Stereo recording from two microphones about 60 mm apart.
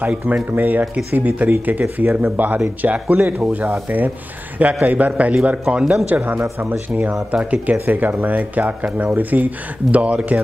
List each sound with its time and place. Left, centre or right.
0.0 s speech: right
4.8 s speech: right
6.4 s speech: right
7.2 s speech: right